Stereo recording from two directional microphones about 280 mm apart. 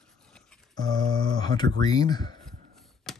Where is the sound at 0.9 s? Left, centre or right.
Centre.